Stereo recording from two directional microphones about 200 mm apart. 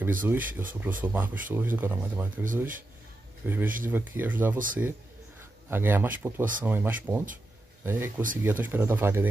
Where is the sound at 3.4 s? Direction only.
10° right (ahead or behind).